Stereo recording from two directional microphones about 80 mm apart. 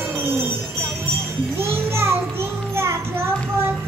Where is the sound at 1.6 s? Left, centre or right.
Right.